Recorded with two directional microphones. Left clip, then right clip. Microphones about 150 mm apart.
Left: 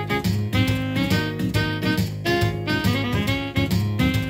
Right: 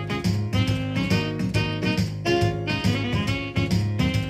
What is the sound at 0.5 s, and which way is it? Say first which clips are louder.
Music: left 5 dB; 15° left (ahead or behind).